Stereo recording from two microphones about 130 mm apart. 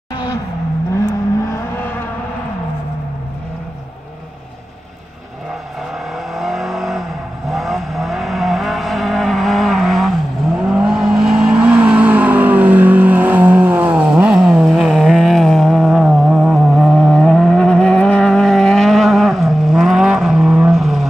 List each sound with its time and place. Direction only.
0.1 s vehicle: 35° left (ahead or behind)
0.9 s vehicle: 25° left (ahead or behind)
6.1 s vehicle: centre (ahead or behind)